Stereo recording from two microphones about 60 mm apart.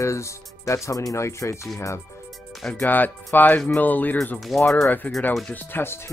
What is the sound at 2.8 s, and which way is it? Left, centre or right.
Speech, left.